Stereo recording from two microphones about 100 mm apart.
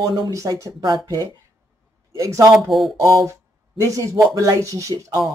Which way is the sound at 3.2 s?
30° right (ahead or behind).